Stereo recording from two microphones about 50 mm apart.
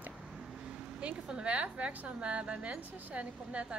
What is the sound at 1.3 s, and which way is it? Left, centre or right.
A woman's voice, right.